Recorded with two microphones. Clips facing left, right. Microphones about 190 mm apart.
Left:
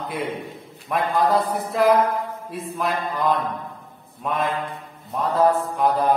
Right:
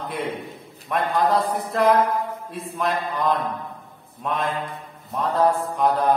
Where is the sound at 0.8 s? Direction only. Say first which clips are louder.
Left 1 dB; centre (ahead or behind).